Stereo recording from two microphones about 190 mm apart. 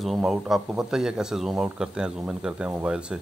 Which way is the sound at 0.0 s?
Centre (ahead or behind).